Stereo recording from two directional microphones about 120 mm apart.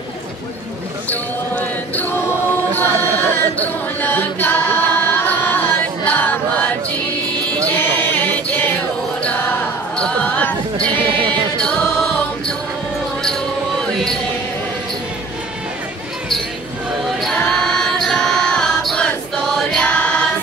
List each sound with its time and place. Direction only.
1.0 s basketball bounce: 15° left (ahead or behind)
2.8 s choir: 15° left (ahead or behind)
7.5 s a sound: 15° left (ahead or behind)
9.2 s music: 10° left (ahead or behind)
17.2 s choir: 5° left (ahead or behind)